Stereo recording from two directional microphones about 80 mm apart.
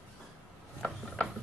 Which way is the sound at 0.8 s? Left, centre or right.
Centre.